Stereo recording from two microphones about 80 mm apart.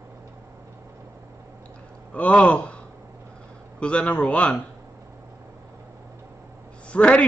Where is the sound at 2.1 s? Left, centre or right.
Centre.